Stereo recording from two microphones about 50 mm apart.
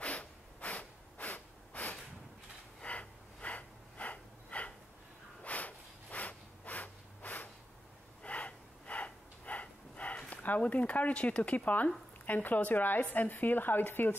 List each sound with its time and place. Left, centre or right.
0.0 s snort: left
2.8 s breathing: left
5.4 s snort: left
8.2 s breathing: left
11.4 s a woman's voice: left